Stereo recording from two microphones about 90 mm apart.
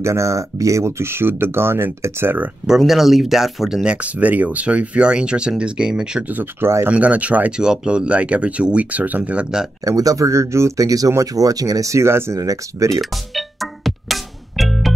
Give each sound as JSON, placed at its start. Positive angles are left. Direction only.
{"t": 0.0, "sound": "speech", "side_deg": -35}
{"t": 2.8, "sound": "speech", "side_deg": 0}
{"t": 6.3, "sound": "speech", "side_deg": -25}
{"t": 6.9, "sound": "speech", "side_deg": -15}
{"t": 9.8, "sound": "speech", "side_deg": -40}
{"t": 12.4, "sound": "speech", "side_deg": -40}
{"t": 13.0, "sound": "music", "side_deg": 0}